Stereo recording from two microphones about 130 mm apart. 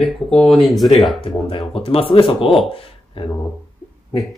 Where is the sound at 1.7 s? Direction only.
45° left (ahead or behind).